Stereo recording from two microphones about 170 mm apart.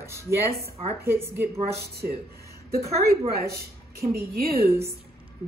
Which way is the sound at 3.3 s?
65° right (ahead or behind).